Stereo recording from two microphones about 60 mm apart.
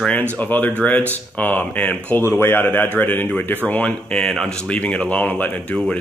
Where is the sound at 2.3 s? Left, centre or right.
Left.